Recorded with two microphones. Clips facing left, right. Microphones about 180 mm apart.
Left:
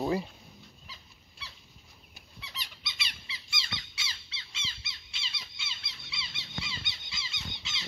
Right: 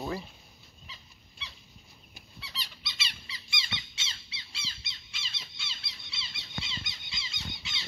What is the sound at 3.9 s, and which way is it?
Squeak, 20° right (ahead or behind).